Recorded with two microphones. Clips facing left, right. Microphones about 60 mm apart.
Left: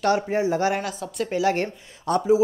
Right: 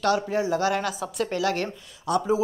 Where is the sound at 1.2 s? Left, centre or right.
Left.